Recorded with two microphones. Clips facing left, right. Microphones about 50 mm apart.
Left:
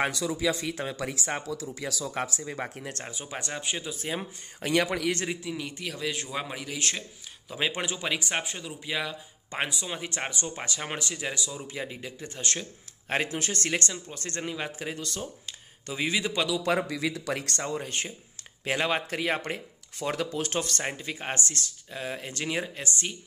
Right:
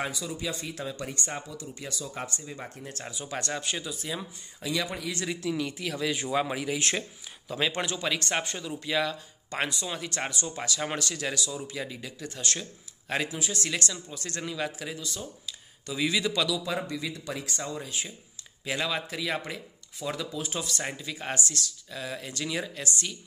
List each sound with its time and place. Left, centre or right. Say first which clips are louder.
0.0 s speech: left 6 dB; left
2.6 s speech: left 4 dB; left
3.3 s speech: right 2 dB; centre
3.8 s speech: left 2 dB; left
4.6 s speech: left 5 dB; left
5.3 s speech: right 3 dB; centre
7.5 s speech: right 1 dB; centre; by 12.6 s left
13.1 s speech: left 2 dB; left
15.0 s speech: left 2 dB; left
15.9 s speech: right 1 dB; left
16.6 s speech: left 5 dB; left
17.7 s speech: left 3 dB; left
20.1 s speech: left 3 dB; left
20.8 s speech: left 1 dB; left